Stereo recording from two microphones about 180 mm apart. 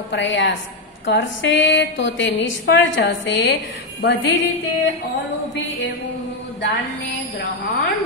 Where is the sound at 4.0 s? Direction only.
70° left (ahead or behind).